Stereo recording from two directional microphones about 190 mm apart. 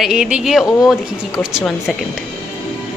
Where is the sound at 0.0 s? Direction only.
5° right (ahead or behind).